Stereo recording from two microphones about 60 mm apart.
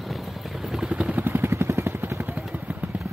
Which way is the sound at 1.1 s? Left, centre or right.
Right.